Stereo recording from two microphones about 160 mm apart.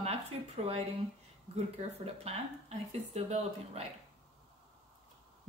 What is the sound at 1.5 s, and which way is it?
Speech, 40° right (ahead or behind).